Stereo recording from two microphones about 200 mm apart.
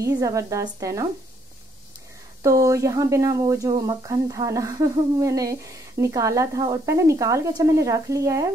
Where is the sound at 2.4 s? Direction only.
15° right (ahead or behind).